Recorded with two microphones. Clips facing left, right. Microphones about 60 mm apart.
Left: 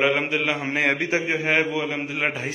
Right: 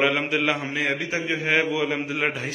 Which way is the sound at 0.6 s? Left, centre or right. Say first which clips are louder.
Left 3 dB; left.